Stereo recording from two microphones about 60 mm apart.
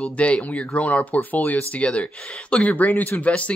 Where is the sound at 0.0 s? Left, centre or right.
Left.